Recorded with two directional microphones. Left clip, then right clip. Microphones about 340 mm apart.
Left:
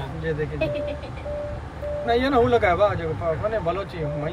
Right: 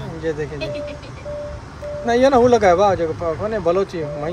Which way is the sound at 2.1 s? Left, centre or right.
Centre.